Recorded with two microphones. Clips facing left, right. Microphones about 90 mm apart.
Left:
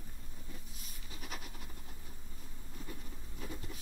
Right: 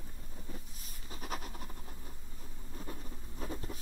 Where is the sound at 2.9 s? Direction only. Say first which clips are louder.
Right 3 dB; 35° right (ahead or behind).